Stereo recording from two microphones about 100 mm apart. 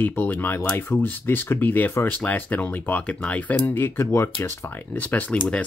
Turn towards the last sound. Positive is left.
turn(degrees=15)  # may be behind; listen again after turning